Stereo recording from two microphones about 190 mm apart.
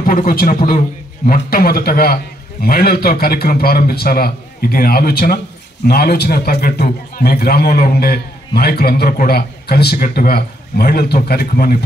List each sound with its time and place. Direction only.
0.0 s a man's voice: 50° left (ahead or behind)